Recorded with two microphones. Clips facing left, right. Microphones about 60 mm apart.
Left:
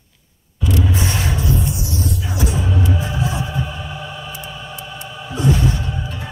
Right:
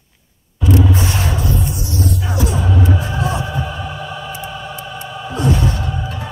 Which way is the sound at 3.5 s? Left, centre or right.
Right.